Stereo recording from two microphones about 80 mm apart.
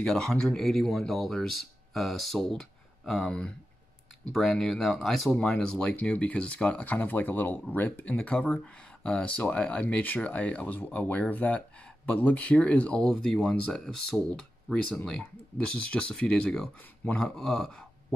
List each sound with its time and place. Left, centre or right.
0.0 s speech: centre
13.0 s speech: centre
14.7 s speech: centre